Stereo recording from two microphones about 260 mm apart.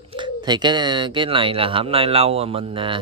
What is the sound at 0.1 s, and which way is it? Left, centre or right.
Speech, centre.